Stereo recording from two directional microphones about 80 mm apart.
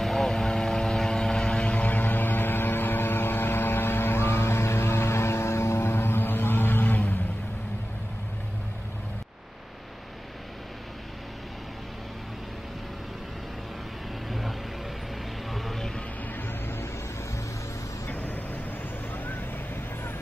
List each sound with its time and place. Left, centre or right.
0.0 s vehicle: centre; by 7.2 s left
15.5 s music: centre
16.3 s music: left
18.0 s vehicle: left